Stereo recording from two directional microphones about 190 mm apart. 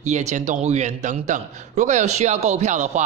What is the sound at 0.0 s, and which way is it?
Speech, 35° right (ahead or behind).